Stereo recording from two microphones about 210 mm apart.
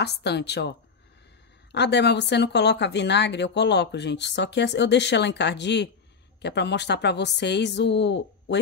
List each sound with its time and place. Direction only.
0.0 s speech: 55° left (ahead or behind)